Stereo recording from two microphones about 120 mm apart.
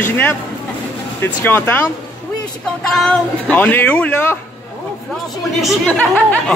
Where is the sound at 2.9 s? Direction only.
5° left (ahead or behind).